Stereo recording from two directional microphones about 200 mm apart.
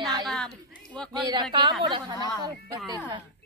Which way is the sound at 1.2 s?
20° right (ahead or behind).